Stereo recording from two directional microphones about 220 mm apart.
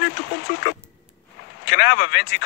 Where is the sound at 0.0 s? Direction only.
55° left (ahead or behind).